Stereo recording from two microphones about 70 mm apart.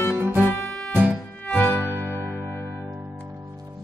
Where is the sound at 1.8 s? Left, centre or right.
Right.